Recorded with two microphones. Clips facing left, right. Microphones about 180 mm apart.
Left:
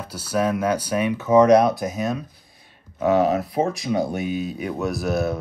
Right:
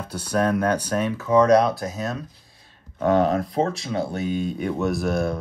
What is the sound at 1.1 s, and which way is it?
Speech, 20° left (ahead or behind).